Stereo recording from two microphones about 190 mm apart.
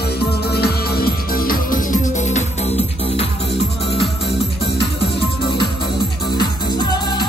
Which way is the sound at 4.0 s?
Centre (ahead or behind).